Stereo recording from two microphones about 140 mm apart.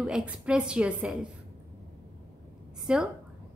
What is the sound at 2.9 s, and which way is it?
Speech, 5° right (ahead or behind).